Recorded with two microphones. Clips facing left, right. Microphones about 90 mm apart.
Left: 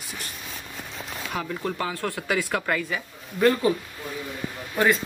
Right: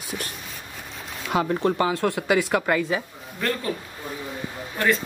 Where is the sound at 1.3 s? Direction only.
85° right.